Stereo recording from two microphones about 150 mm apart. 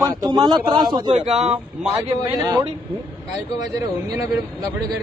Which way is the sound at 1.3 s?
50° right (ahead or behind).